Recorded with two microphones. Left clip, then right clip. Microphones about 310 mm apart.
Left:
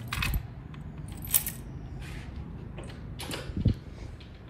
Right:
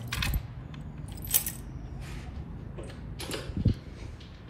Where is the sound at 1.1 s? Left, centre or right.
Centre.